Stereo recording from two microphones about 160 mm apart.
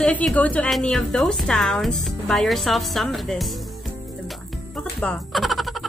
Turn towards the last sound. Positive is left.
turn(degrees=0)  # may be behind; listen again after turning